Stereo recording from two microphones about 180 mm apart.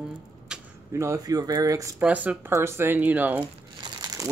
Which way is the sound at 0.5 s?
5° right (ahead or behind).